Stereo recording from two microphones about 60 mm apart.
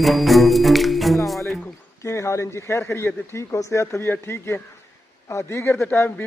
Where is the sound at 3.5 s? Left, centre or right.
Left.